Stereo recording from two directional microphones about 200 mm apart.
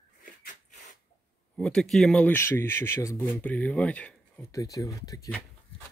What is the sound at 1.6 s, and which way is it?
Speech, centre (ahead or behind).